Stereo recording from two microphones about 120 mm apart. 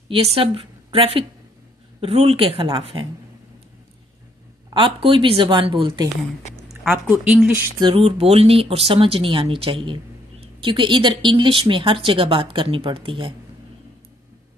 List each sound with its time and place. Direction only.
0.1 s a woman's voice: 55° right (ahead or behind)
4.6 s speech: 45° right (ahead or behind)
7.4 s a sound: 15° right (ahead or behind)
7.8 s speech: 50° right (ahead or behind)